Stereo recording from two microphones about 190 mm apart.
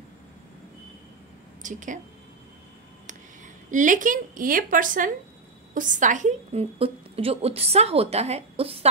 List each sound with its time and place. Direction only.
1.6 s a woman's voice: 40° right (ahead or behind)
3.7 s a woman's voice: 40° right (ahead or behind)